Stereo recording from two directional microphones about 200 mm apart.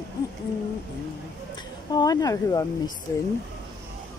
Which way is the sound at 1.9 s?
20° left (ahead or behind).